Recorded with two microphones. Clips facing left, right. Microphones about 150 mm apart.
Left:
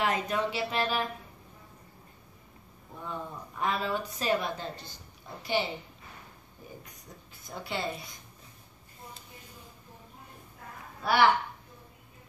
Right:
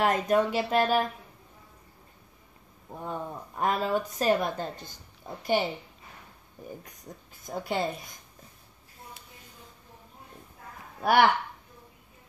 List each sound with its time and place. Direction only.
0.0 s a woman's voice: 45° right (ahead or behind)
3.0 s a woman's voice: 45° right (ahead or behind)
7.1 s a woman's voice: 50° right (ahead or behind)
11.0 s speech: 50° right (ahead or behind)